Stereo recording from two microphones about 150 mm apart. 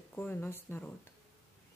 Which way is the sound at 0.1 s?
15° left (ahead or behind).